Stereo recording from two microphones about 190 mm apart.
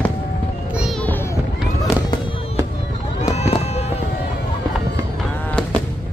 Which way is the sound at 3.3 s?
35° left (ahead or behind).